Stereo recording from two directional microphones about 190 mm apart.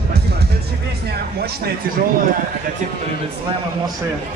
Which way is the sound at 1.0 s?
55° right (ahead or behind).